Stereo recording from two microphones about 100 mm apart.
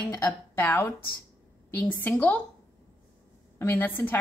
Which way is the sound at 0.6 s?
20° left (ahead or behind).